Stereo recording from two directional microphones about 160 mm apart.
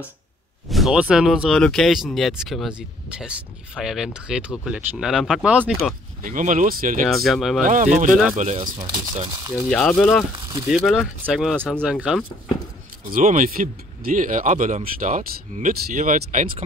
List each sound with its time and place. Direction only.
0.7 s speech: centre (ahead or behind)
6.2 s speech: 55° right (ahead or behind)
7.1 s speech: centre (ahead or behind)
7.6 s speech: 50° right (ahead or behind)
8.4 s speech: 40° right (ahead or behind)
8.7 s speech: 20° right (ahead or behind)
9.7 s speech: 5° left (ahead or behind)
13.0 s speech: 55° right (ahead or behind)